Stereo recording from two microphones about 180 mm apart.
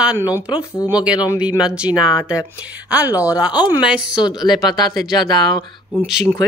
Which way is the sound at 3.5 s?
25° left (ahead or behind).